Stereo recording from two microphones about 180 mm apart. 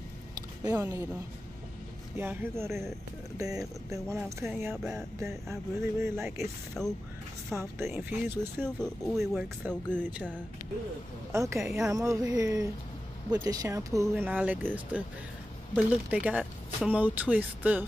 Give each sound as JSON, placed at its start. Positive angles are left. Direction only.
{"t": 0.7, "sound": "speech", "side_deg": -15}
{"t": 2.1, "sound": "speech", "side_deg": -15}
{"t": 6.8, "sound": "speech", "side_deg": 0}
{"t": 7.5, "sound": "speech", "side_deg": -15}
{"t": 8.6, "sound": "speech", "side_deg": 0}
{"t": 11.3, "sound": "speech", "side_deg": -15}
{"t": 11.6, "sound": "speech", "side_deg": -5}
{"t": 11.9, "sound": "speech", "side_deg": -20}